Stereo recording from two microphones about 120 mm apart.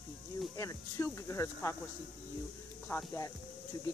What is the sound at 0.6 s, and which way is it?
Speech, 25° left (ahead or behind).